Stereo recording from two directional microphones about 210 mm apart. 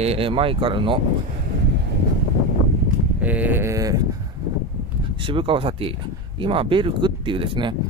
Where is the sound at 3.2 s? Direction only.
10° right (ahead or behind).